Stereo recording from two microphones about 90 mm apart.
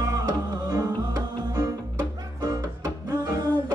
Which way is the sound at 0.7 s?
35° right (ahead or behind).